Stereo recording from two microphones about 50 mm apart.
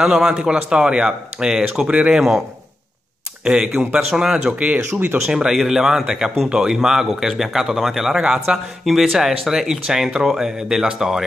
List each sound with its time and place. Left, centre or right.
0.0 s speech: centre
0.3 s speech: centre
3.4 s speech: centre
4.1 s speech: centre
8.2 s speech: centre
8.8 s speech: centre